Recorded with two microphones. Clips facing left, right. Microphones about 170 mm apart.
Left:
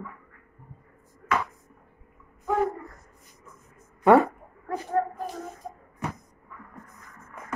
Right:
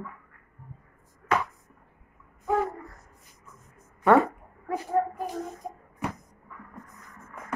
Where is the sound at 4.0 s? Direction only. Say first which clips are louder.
Left 2 dB; 20° left (ahead or behind).